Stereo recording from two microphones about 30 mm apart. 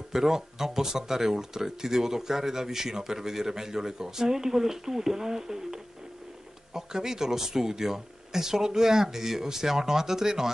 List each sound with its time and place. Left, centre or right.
0.1 s speech: centre